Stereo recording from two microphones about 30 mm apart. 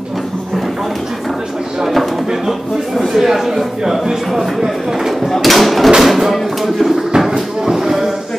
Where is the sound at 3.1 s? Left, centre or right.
Centre.